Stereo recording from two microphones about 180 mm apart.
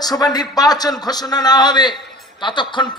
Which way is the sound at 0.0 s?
20° left (ahead or behind).